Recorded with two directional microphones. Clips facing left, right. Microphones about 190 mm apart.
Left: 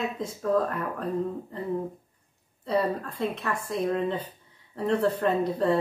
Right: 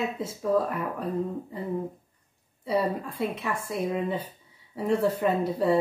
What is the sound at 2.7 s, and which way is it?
Speech, 10° right (ahead or behind).